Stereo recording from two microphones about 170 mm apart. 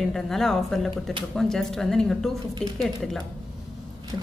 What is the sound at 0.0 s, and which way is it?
A woman's voice, centre (ahead or behind).